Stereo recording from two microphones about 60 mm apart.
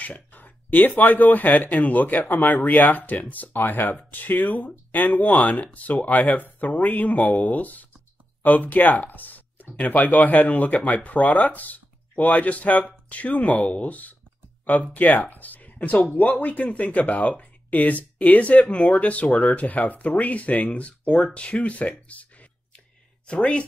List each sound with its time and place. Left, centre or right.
0.0 s speech: left
22.0 s a sound: left
23.2 s speech: centre